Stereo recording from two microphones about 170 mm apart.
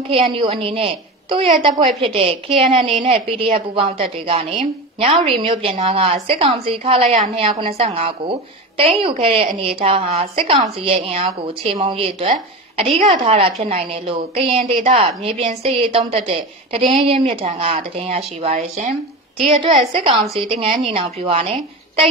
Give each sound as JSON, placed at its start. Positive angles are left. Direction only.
{"t": 0.1, "sound": "a woman's voice", "side_deg": -30}